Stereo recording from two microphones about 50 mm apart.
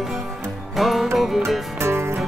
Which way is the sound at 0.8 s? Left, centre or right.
Centre.